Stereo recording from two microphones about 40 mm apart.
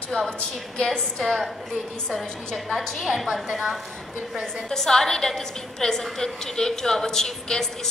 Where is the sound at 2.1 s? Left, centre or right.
Centre.